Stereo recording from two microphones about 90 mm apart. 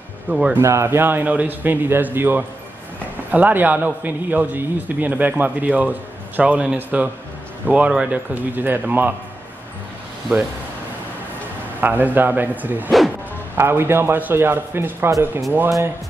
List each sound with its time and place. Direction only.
0.3 s speech: 10° right (ahead or behind)
0.6 s a man's voice: 30° right (ahead or behind)
11.8 s a man's voice: 20° right (ahead or behind)